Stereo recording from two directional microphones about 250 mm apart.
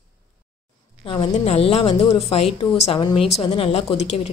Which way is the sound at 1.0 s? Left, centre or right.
Centre.